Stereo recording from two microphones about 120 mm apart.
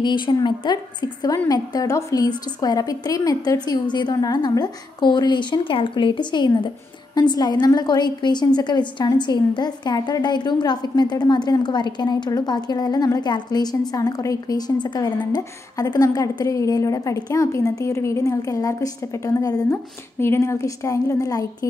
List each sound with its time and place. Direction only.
0.0 s a woman's voice: 40° left (ahead or behind)